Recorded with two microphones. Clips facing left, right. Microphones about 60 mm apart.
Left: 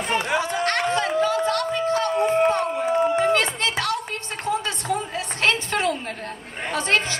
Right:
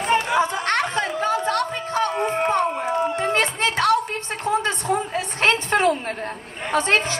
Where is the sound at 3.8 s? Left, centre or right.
Right.